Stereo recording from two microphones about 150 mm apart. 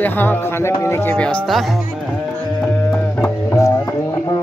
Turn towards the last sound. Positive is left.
turn(degrees=20)  # may be behind; listen again after turning